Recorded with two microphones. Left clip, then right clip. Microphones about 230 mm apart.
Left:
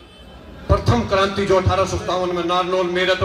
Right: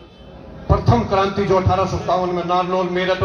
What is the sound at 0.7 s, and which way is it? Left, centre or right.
A man's voice, left.